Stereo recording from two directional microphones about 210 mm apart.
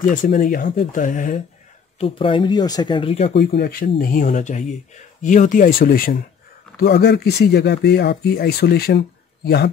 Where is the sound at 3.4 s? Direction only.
45° left (ahead or behind).